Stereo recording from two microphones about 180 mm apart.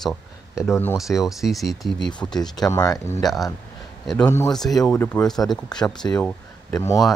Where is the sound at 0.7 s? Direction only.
15° left (ahead or behind).